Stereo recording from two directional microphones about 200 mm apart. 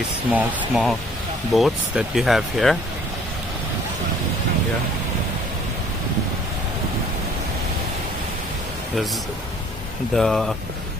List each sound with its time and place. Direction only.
0.3 s speech: 5° right (ahead or behind)
10.1 s speech: centre (ahead or behind)